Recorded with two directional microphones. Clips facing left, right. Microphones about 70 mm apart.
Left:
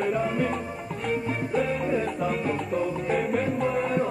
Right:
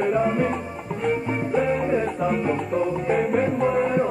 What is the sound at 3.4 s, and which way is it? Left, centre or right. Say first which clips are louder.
Music: right 5 dB; right.